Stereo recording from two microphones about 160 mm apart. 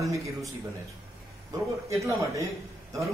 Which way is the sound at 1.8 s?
20° right (ahead or behind).